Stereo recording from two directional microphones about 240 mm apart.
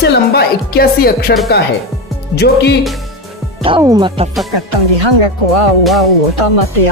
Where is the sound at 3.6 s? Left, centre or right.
Centre.